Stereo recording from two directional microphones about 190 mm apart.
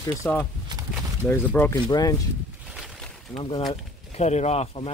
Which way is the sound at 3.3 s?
25° left (ahead or behind).